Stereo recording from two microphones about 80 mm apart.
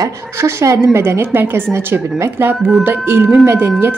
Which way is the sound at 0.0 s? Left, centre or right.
Right.